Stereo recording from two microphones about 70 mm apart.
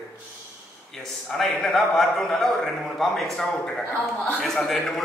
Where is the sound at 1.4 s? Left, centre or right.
Centre.